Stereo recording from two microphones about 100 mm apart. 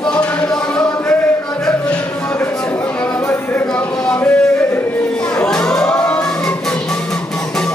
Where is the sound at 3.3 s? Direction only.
20° left (ahead or behind).